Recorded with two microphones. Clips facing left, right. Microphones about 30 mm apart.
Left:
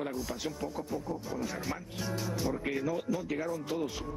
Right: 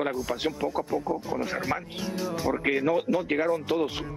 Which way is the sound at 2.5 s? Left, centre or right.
Right.